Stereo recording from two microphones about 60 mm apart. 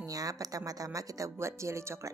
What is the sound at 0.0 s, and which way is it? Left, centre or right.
Speech, right.